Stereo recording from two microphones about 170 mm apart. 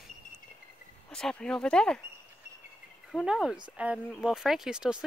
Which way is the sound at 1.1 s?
5° left (ahead or behind).